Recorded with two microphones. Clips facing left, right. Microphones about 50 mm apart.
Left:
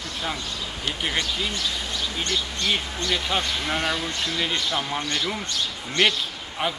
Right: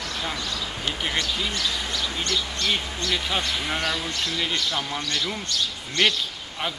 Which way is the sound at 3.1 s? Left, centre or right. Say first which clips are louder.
Left 1 dB; centre.